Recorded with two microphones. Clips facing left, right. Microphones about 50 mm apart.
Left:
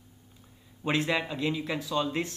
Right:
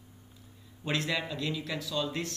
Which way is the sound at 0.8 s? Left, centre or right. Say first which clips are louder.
Left 4 dB; left.